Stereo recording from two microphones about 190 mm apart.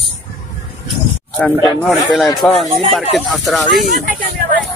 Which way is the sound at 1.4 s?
5° left (ahead or behind).